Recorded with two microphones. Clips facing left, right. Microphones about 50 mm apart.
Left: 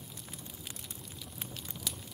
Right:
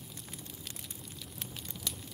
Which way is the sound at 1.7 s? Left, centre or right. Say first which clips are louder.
Even; centre.